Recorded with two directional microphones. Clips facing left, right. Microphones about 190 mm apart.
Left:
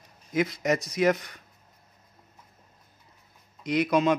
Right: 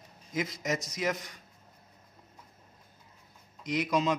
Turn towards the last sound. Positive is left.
turn(degrees=60)  # may be behind; listen again after turning